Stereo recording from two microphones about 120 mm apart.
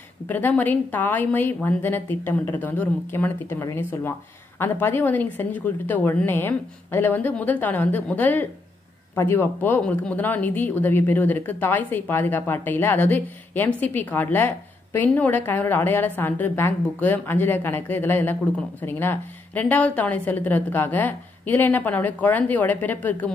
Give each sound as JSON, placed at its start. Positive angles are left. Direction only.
{"t": 0.3, "sound": "speech", "side_deg": 15}